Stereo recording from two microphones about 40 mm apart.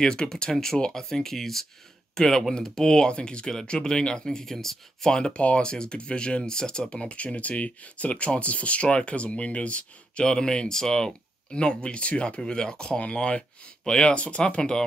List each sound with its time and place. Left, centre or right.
0.0 s speech: left
10.2 s speech: centre
14.1 s speech: left
14.4 s speech: left